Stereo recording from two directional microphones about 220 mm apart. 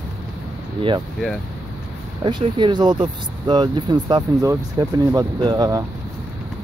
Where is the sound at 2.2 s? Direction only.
20° right (ahead or behind).